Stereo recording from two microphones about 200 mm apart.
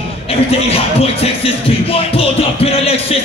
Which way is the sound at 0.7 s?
30° left (ahead or behind).